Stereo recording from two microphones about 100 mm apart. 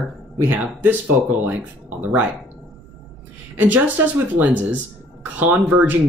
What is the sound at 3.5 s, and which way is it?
Speech, 15° right (ahead or behind).